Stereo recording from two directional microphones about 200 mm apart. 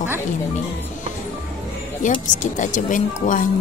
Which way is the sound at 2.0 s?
40° left (ahead or behind).